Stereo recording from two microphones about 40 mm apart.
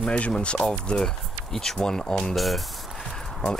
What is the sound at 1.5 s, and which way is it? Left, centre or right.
Speech, centre.